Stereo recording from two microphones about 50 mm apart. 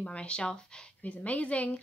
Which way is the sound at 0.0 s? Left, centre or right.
Left.